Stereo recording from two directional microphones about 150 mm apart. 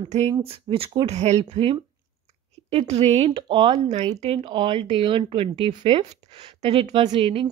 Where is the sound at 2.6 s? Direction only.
45° right (ahead or behind).